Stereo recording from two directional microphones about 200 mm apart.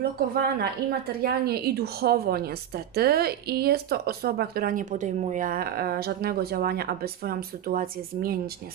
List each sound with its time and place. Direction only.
0.4 s a woman's voice: 50° right (ahead or behind)